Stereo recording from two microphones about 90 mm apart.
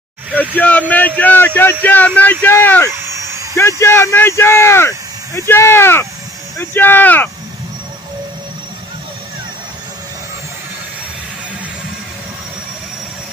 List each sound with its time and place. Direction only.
0.6 s speech: 15° left (ahead or behind)
2.9 s a sound: 30° right (ahead or behind)
3.5 s speech: 30° left (ahead or behind)